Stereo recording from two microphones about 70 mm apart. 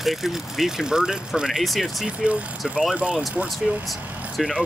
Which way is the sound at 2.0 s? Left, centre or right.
Centre.